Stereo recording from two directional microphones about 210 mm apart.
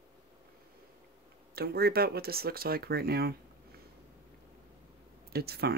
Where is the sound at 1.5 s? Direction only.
50° right (ahead or behind).